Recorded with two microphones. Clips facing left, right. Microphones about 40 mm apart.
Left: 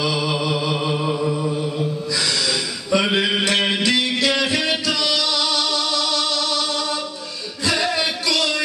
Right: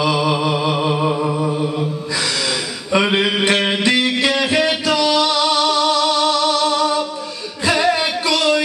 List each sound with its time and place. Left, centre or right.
0.0 s music: right
0.3 s music: right
2.9 s a sound: right
4.4 s music: right